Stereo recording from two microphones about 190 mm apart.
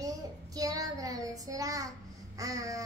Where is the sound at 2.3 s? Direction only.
20° right (ahead or behind).